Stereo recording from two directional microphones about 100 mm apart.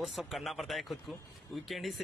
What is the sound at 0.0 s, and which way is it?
A man's voice, centre (ahead or behind).